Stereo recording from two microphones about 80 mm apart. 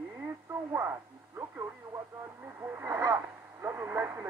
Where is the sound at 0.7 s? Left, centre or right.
Right.